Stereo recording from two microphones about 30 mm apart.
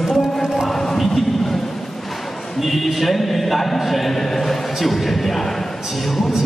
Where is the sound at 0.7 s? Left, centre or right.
Centre.